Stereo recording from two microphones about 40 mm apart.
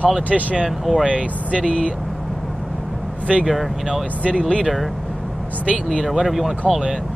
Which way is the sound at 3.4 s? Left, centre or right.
Centre.